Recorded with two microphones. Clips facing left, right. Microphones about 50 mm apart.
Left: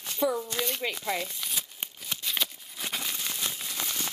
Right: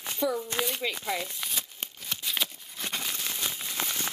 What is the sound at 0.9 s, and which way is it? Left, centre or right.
Speech, centre.